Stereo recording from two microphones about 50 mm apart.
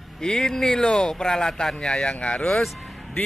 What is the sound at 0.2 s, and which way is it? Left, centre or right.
Speech, centre.